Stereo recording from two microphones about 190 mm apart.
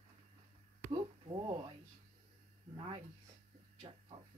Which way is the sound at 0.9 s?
25° right (ahead or behind).